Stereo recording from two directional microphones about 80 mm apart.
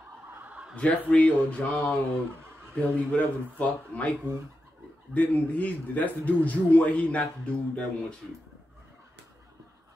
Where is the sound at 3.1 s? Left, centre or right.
Centre.